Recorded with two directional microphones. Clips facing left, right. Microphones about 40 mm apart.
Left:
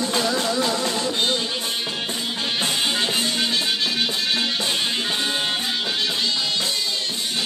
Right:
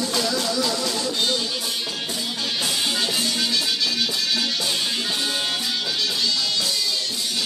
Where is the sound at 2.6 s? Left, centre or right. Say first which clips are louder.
Left 2 dB; left.